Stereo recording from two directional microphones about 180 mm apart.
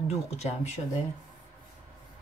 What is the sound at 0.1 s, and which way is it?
Speech, 35° left (ahead or behind).